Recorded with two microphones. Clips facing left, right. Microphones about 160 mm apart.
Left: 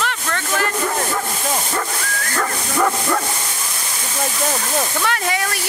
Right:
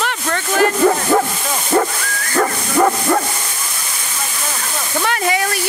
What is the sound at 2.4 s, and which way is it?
Bow-wow, 25° right (ahead or behind).